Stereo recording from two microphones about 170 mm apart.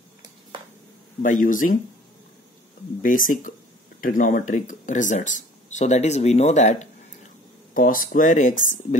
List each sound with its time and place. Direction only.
1.2 s speech: 50° left (ahead or behind)
3.0 s speech: 50° left (ahead or behind)